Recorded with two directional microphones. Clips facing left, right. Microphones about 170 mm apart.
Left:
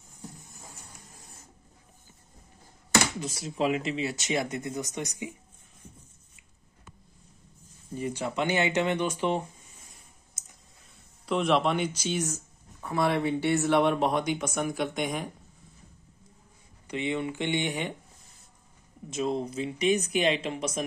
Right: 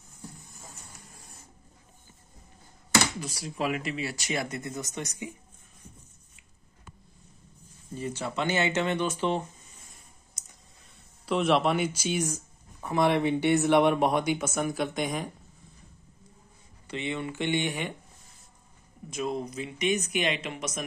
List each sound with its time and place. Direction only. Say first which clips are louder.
3.2 s speech: left 3 dB; 25° left (ahead or behind)
7.9 s speech: left 2 dB; 15° left (ahead or behind)
10.4 s clicking: left 2 dB; 5° left (ahead or behind)
11.2 s speech: right 1 dB; centre (ahead or behind)
16.8 s speech: left 3 dB; 15° left (ahead or behind)
19.0 s speech: left 2 dB; 25° left (ahead or behind)